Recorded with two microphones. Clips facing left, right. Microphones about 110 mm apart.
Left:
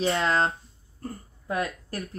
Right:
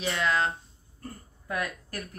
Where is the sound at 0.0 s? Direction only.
30° left (ahead or behind).